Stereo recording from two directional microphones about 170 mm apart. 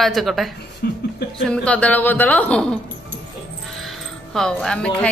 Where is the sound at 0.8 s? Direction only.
65° left (ahead or behind).